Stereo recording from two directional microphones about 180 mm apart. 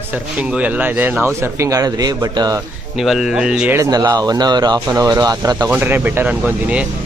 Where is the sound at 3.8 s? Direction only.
20° right (ahead or behind).